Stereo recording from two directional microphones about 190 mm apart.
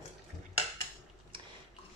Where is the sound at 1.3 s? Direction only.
25° right (ahead or behind).